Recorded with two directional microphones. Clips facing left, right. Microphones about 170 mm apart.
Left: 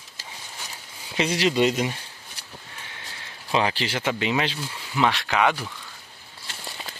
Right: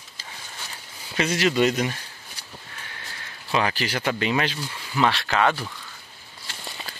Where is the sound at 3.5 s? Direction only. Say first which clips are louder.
Even; 25° left (ahead or behind).